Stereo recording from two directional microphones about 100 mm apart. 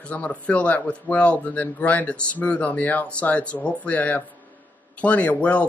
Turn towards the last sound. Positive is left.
turn(degrees=10)  # may be behind; listen again after turning